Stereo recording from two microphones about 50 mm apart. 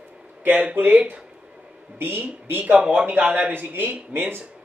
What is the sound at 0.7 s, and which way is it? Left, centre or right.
Speech, right.